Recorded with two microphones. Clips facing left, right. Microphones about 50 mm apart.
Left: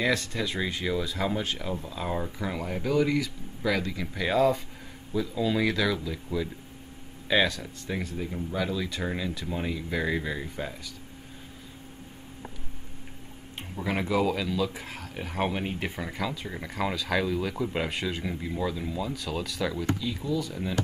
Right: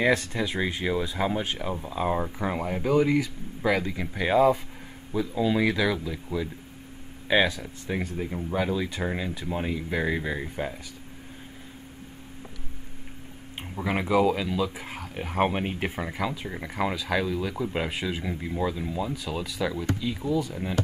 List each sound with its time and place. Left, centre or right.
0.0 s speech: right
13.6 s a sound: centre
14.2 s speech: centre
20.0 s speech: centre